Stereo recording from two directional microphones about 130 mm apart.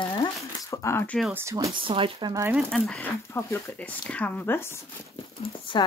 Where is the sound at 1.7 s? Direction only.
40° right (ahead or behind).